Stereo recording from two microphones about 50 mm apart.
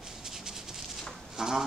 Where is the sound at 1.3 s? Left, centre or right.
Centre.